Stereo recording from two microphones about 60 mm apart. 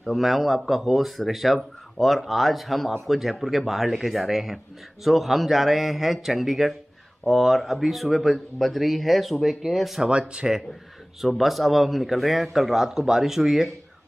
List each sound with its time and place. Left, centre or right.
0.0 s speech: centre
10.0 s speech: centre
11.2 s speech: centre